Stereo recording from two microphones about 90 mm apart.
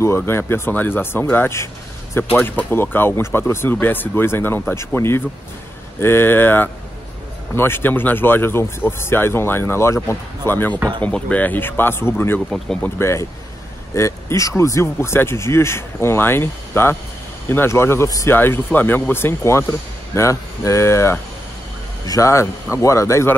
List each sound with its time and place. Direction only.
0.0 s speech: 25° left (ahead or behind)
11.0 s speech: 15° left (ahead or behind)
12.4 s speech: centre (ahead or behind)
13.0 s speech: 30° left (ahead or behind)
18.3 s speech: 25° left (ahead or behind)